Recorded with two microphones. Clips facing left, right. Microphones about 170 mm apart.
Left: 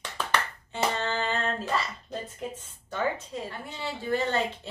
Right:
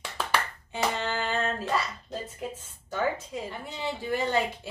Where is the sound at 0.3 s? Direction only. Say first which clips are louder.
Even; 10° right (ahead or behind).